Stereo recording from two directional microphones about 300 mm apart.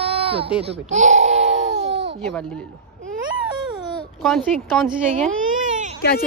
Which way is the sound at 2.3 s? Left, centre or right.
Centre.